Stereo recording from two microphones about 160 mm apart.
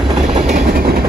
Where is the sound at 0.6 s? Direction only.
70° right (ahead or behind).